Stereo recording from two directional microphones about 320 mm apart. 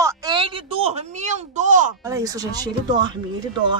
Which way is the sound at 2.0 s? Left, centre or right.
Centre.